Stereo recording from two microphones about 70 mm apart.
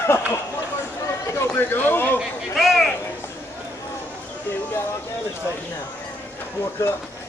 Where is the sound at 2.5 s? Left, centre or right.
Centre.